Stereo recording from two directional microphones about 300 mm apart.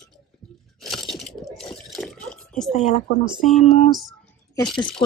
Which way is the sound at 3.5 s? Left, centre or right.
Centre.